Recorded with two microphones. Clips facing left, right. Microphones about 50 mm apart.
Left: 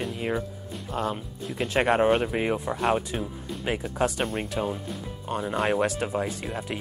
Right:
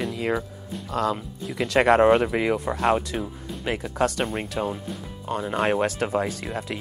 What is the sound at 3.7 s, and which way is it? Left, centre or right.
Speech, right.